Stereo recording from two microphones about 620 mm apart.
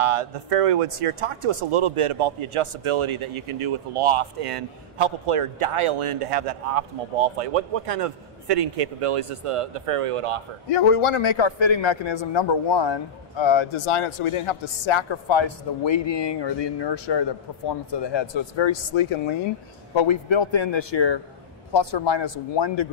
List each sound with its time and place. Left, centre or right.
0.0 s speech: right
10.7 s a man's voice: left